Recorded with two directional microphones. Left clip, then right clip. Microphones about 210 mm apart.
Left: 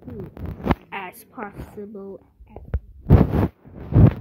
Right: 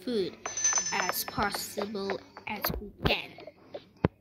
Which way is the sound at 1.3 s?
5° right (ahead or behind).